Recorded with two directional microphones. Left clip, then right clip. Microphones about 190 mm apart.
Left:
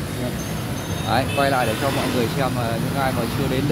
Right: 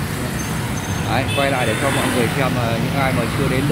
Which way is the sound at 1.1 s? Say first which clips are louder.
Even; 10° left (ahead or behind).